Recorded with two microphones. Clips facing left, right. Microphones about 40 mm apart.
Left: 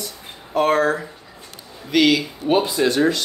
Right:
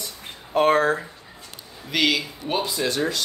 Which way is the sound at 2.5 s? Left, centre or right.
Left.